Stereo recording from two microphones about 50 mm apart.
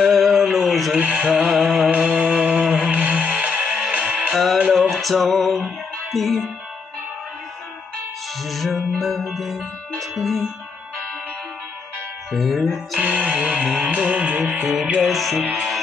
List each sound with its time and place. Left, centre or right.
0.0 s a sound: centre
0.9 s music: right
2.0 s music: centre
4.7 s music: centre
6.1 s speech: centre
8.4 s music: centre
12.3 s speech: centre
13.0 s music: right
15.0 s music: centre